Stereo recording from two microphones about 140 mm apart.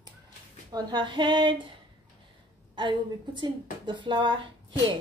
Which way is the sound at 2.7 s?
35° right (ahead or behind).